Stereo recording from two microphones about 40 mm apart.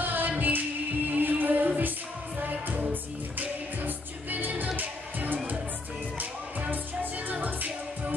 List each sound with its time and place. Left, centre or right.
0.0 s music: right
2.9 s music: right